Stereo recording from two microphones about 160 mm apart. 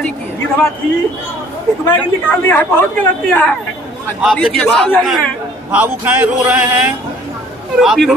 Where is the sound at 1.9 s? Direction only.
10° left (ahead or behind).